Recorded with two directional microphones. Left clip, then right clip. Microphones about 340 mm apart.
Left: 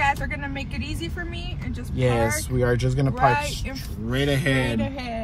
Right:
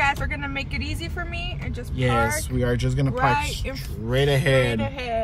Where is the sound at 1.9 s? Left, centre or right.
Centre.